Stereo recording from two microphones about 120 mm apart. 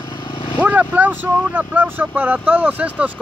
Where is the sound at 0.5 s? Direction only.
15° right (ahead or behind).